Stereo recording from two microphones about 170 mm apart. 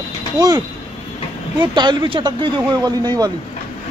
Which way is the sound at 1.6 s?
25° right (ahead or behind).